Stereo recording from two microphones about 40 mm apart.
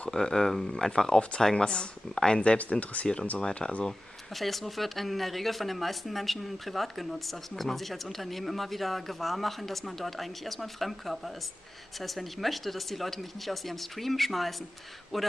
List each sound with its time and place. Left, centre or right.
0.1 s speech: centre
2.6 s speech: left
3.3 s speech: left
4.3 s speech: centre